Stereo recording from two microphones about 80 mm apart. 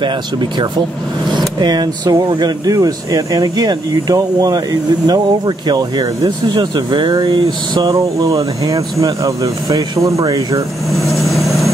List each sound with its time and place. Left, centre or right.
0.0 s speech: right
1.6 s speech: right
7.9 s speech: right
11.0 s vehicle: centre